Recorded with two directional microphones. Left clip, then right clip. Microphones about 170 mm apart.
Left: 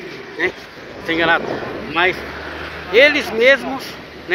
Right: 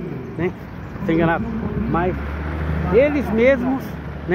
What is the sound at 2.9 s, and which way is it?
Speech, 10° left (ahead or behind).